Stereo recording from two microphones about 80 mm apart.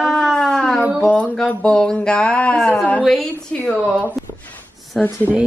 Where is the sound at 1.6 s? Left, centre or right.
Centre.